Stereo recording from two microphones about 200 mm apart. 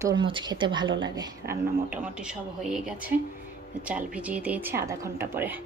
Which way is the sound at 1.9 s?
5° right (ahead or behind).